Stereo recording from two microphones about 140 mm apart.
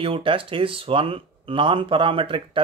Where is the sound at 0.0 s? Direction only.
40° right (ahead or behind).